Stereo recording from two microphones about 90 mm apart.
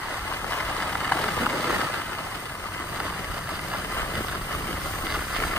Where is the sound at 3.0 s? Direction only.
10° right (ahead or behind).